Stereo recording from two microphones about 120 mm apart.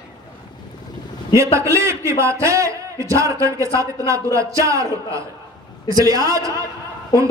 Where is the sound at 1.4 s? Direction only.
25° right (ahead or behind).